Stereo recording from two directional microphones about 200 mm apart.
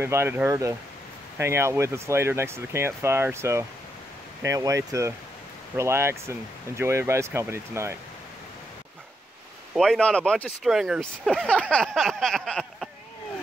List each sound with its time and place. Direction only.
0.0 s speech: 10° right (ahead or behind)
9.8 s speech: 5° left (ahead or behind)